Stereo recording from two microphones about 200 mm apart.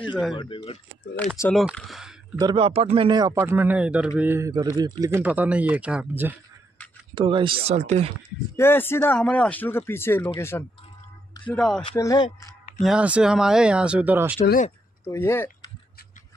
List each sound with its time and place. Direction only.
0.4 s speech: 25° left (ahead or behind)
1.1 s speech: 5° left (ahead or behind)
2.3 s speech: 25° right (ahead or behind); by 6.3 s 5° right (ahead or behind)
7.2 s speech: 25° right (ahead or behind)
8.5 s speech: 10° left (ahead or behind)
11.9 s speech: 15° left (ahead or behind)
12.8 s speech: 5° right (ahead or behind)
15.0 s speech: 10° left (ahead or behind)